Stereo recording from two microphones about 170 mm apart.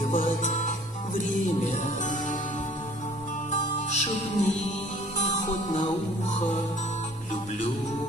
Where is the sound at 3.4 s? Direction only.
45° left (ahead or behind).